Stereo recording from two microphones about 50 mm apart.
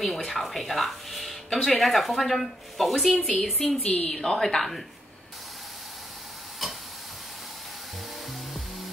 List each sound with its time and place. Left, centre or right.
0.0 s speech: centre
3.1 s a woman's voice: left
4.2 s speech: centre